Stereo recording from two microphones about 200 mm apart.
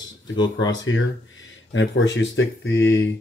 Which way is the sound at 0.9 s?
90° left.